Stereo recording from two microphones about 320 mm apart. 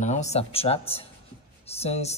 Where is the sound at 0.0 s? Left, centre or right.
Left.